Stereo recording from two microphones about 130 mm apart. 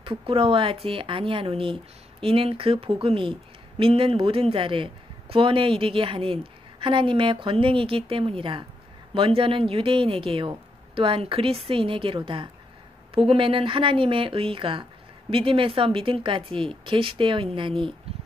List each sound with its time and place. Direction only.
0.0 s speech: 45° right (ahead or behind)